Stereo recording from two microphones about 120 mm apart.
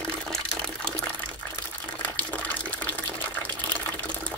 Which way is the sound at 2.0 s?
10° left (ahead or behind).